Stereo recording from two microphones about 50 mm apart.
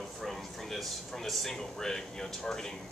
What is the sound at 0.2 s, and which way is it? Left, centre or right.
Speech, centre.